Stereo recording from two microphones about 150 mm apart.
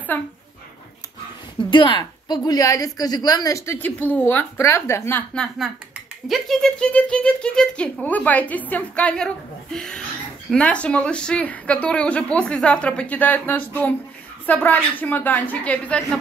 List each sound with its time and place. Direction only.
0.1 s speech: 10° left (ahead or behind)
1.6 s a woman's voice: 35° left (ahead or behind); by 5.2 s 15° left (ahead or behind)
5.3 s speech: 5° left (ahead or behind)